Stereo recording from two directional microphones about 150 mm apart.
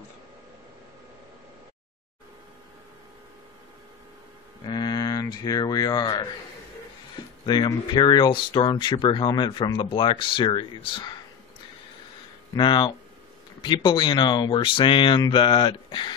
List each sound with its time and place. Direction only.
4.6 s speech: 30° left (ahead or behind)
7.4 s speech: 30° left (ahead or behind)
12.5 s speech: 30° left (ahead or behind)